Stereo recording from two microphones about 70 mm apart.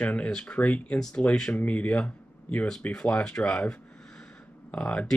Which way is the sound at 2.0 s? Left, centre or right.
Centre.